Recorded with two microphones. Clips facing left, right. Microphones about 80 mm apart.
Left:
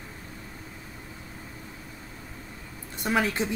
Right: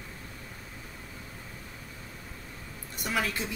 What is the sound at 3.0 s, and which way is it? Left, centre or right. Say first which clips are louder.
Speech: left 5 dB; left.